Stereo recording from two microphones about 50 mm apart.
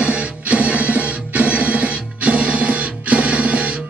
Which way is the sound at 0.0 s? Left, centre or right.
Right.